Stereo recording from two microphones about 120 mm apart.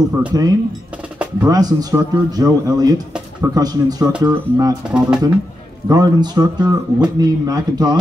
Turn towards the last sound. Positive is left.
turn(degrees=-35)  # may be behind; listen again after turning